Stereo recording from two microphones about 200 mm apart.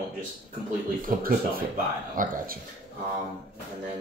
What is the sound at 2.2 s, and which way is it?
Speech, 45° right (ahead or behind).